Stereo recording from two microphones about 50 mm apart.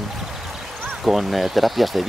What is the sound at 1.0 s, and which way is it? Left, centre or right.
Speech, centre.